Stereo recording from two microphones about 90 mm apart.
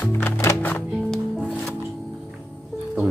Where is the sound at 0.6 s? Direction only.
20° left (ahead or behind).